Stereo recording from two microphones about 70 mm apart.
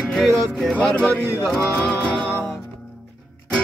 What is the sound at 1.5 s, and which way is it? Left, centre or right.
Music, centre.